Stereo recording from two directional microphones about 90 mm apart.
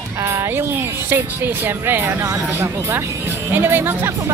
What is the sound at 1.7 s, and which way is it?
A woman's voice, 25° right (ahead or behind).